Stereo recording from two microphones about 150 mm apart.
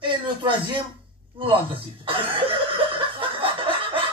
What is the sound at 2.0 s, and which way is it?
Chuckle, 35° right (ahead or behind).